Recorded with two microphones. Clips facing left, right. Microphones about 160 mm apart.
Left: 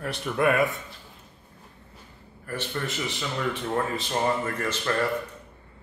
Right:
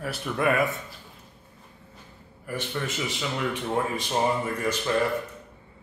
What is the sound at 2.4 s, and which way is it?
Speech, 10° right (ahead or behind).